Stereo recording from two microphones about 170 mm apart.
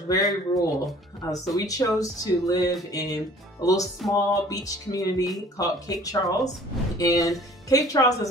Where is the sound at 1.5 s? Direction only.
20° left (ahead or behind).